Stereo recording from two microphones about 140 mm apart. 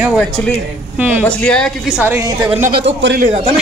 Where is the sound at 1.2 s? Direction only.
10° left (ahead or behind).